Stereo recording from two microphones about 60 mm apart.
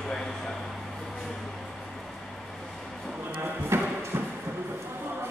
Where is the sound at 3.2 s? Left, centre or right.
Right.